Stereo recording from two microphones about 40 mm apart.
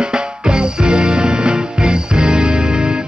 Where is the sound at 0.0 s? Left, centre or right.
Right.